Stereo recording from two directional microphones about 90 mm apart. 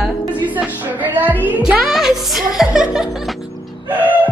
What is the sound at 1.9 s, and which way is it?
Speech, 5° right (ahead or behind).